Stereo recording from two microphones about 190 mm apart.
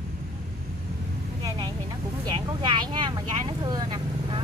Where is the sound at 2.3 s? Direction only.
25° right (ahead or behind).